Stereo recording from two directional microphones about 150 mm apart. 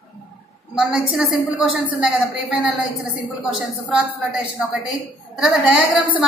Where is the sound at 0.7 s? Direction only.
5° right (ahead or behind).